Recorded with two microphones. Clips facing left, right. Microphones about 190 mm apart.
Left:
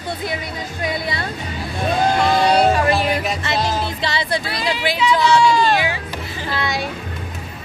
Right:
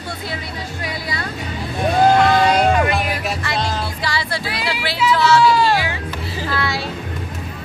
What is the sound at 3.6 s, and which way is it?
Music, 20° left (ahead or behind).